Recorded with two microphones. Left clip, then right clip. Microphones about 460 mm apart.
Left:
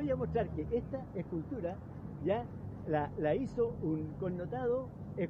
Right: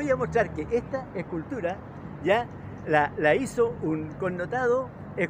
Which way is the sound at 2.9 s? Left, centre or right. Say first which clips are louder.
Right 11 dB; left.